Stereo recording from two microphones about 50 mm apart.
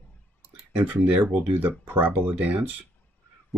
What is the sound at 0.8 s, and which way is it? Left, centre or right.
Speech, right.